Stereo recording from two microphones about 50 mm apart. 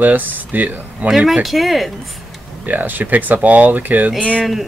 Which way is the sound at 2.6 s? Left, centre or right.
Right.